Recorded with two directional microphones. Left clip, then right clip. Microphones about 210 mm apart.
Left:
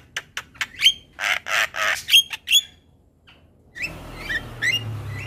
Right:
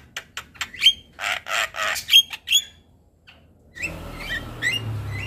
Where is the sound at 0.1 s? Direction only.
15° left (ahead or behind).